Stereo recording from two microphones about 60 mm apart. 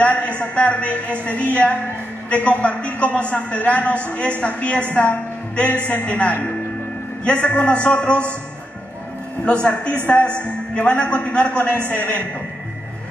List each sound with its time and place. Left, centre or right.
0.0 s a woman's voice: left
9.4 s a woman's voice: centre